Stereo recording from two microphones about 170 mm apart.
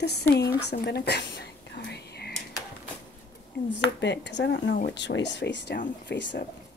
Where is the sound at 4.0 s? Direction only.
90° left.